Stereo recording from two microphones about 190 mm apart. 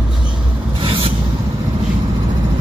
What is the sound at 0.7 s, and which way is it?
Vehicle, 25° right (ahead or behind).